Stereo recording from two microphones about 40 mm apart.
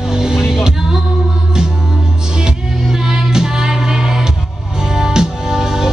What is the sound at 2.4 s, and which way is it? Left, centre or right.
Music, centre.